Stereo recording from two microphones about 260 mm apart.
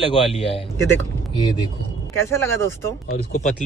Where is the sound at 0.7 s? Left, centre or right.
Centre.